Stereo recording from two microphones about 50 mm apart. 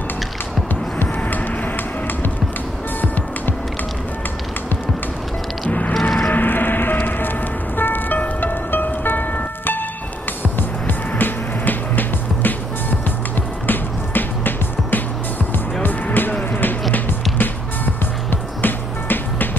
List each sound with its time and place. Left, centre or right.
5.7 s music: left
6.0 s music: centre
6.3 s music: left
10.5 s music: left
13.7 s music: left
18.6 s music: left